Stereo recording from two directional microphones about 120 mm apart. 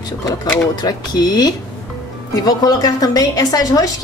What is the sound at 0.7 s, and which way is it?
A woman's voice, 35° left (ahead or behind).